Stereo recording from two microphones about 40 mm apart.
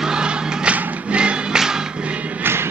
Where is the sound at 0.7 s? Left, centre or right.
Right.